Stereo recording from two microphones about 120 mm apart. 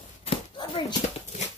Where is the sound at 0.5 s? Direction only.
40° left (ahead or behind).